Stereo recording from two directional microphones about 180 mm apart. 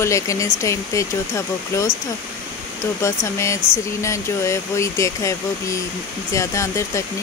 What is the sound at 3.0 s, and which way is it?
Speech, 15° left (ahead or behind).